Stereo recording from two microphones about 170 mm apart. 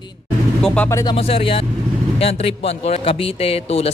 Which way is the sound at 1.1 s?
35° left (ahead or behind).